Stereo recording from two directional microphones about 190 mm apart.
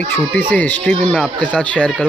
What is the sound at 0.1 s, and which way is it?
Speech, 10° left (ahead or behind).